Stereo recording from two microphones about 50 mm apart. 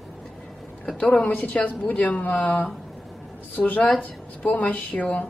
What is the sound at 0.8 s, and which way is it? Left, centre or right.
A woman's voice, left.